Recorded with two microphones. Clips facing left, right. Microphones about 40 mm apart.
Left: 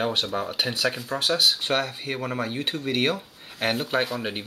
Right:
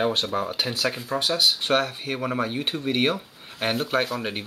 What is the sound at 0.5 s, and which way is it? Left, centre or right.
Speech, centre.